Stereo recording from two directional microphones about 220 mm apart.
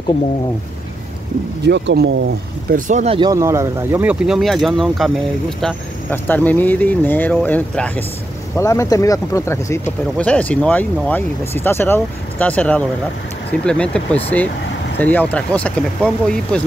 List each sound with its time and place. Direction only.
1.6 s speech: 50° right (ahead or behind)
2.7 s speech: 35° right (ahead or behind)
3.2 s speech: 15° right (ahead or behind); by 16.6 s 5° left (ahead or behind)